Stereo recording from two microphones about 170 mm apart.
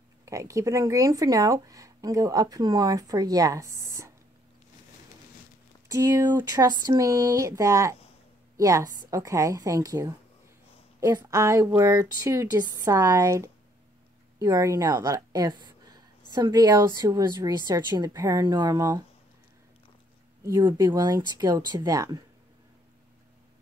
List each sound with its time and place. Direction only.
0.2 s speech: 20° right (ahead or behind)
5.9 s a woman's voice: 20° right (ahead or behind)
20.4 s speech: 25° right (ahead or behind)